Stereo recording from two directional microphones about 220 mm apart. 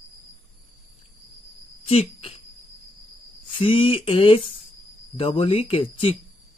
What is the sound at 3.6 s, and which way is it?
Speech, 25° left (ahead or behind).